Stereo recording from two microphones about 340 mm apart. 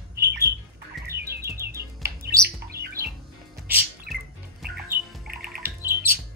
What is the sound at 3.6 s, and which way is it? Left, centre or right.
Music, centre.